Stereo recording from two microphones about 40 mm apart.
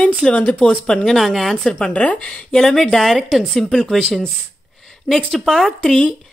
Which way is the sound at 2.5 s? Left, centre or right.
Centre.